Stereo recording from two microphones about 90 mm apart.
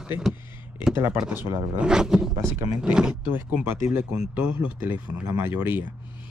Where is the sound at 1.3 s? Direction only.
25° right (ahead or behind).